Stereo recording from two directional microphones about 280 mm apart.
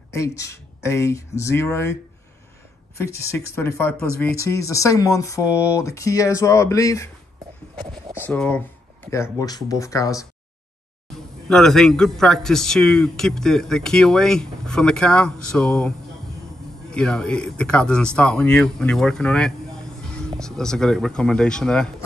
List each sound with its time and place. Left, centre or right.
0.1 s speech: centre
3.0 s speech: centre
7.7 s speech: centre
8.3 s a man's voice: centre
11.4 s a man's voice: centre
16.9 s a man's voice: centre